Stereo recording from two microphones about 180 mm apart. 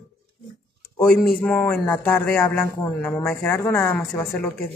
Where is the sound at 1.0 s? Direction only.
5° left (ahead or behind).